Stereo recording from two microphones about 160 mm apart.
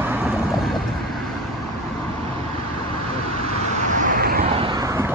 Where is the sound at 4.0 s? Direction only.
65° right (ahead or behind).